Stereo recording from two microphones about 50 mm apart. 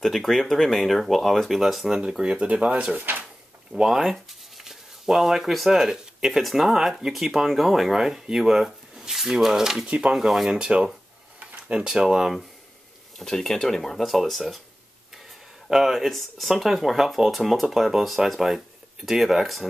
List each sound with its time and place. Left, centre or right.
0.0 s speech: centre
1.6 s speech: centre; by 3.0 s right
3.0 s speech: right
3.7 s speech: centre
9.8 s speech: right
10.1 s speech: centre
10.5 s speech: centre
13.2 s speech: centre
15.7 s speech: centre